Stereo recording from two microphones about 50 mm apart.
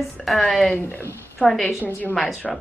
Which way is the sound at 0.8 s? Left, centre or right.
Left.